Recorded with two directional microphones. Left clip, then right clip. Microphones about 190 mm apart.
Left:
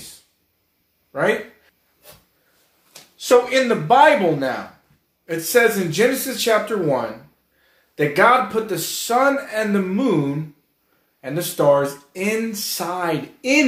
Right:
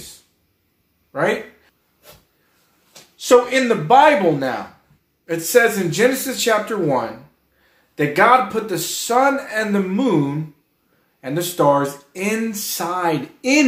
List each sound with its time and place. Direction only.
3.3 s speech: 15° right (ahead or behind)
11.1 s speech: 15° right (ahead or behind)